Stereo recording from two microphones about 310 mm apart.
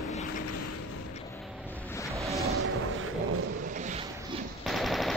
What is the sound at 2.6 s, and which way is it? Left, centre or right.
Music, right.